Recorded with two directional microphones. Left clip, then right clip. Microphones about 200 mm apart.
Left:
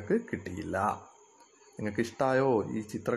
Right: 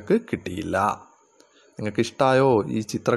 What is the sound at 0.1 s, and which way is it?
Speech, 25° right (ahead or behind).